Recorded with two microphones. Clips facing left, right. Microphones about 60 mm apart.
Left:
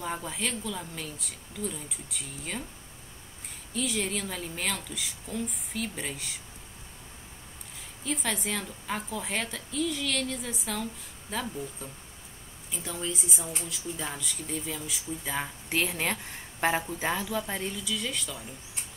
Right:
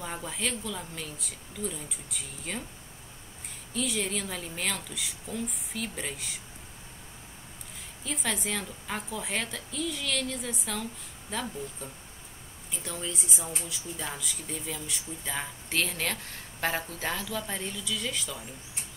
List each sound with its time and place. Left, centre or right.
0.0 s speech: centre
3.7 s speech: centre
8.0 s speech: centre